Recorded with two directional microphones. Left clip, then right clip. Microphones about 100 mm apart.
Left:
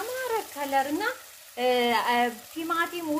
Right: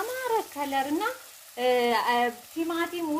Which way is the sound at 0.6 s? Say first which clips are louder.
Left 2 dB; 25° right (ahead or behind).